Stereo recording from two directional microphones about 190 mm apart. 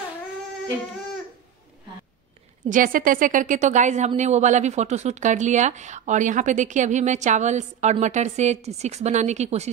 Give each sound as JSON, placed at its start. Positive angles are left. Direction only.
{"t": 2.7, "sound": "a woman's voice", "side_deg": -45}